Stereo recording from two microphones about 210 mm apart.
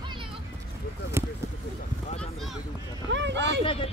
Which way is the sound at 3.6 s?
25° left (ahead or behind).